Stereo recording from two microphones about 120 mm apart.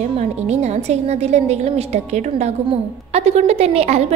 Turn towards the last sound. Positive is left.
turn(degrees=-60)  # may be behind; listen again after turning